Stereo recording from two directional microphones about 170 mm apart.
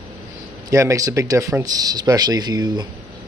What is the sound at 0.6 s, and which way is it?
Speech, 20° right (ahead or behind).